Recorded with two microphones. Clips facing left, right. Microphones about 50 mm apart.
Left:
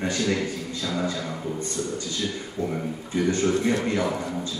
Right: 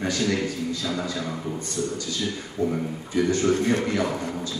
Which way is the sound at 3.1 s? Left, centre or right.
Left.